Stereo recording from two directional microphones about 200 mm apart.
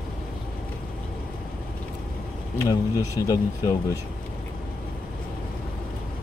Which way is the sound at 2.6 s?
20° left (ahead or behind).